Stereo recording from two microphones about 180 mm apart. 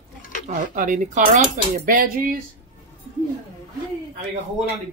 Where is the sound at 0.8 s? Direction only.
45° right (ahead or behind).